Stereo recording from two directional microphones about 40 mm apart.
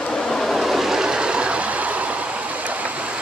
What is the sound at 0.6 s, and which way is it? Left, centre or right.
Vehicle, centre.